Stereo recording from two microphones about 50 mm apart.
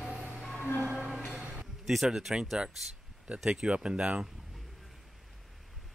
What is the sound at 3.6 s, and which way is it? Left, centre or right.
Speech, right.